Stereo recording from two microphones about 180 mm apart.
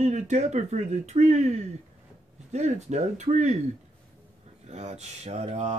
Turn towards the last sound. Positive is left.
turn(degrees=-40)  # may be behind; listen again after turning